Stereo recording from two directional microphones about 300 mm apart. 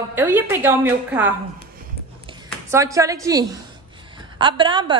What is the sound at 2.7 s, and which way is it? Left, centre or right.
A woman's voice, centre.